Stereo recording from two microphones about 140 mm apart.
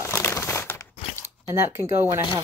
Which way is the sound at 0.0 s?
15° left (ahead or behind).